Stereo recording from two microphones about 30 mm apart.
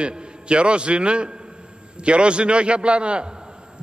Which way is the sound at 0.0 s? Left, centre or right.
Right.